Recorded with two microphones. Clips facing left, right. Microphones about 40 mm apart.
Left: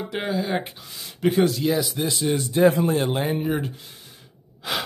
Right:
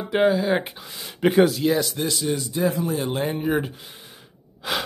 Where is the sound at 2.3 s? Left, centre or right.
Left.